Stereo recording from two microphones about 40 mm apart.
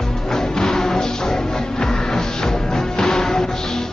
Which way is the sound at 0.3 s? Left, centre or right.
Centre.